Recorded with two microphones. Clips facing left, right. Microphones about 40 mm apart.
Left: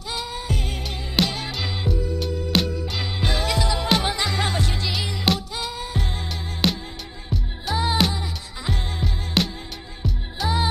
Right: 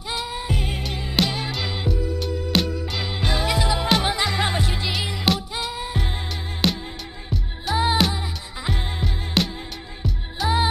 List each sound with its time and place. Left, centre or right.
0.1 s music: centre
1.2 s music: centre
3.2 s music: centre
5.3 s music: centre
5.7 s music: centre
6.6 s music: centre
7.7 s music: centre